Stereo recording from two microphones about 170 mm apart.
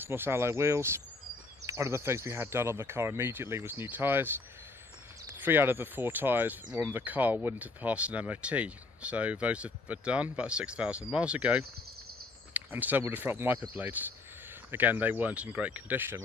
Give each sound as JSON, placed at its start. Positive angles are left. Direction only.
{"t": 0.0, "sound": "speech", "side_deg": -15}
{"t": 5.4, "sound": "speech", "side_deg": -10}